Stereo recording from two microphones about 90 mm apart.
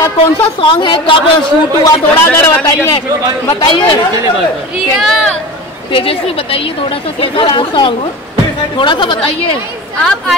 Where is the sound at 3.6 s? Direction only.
80° left.